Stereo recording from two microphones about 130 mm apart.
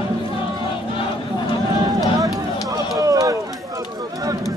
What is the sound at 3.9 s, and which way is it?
Run, 30° right (ahead or behind).